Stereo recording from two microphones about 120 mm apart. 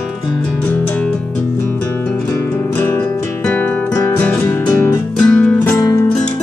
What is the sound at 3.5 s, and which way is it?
Music, 10° left (ahead or behind).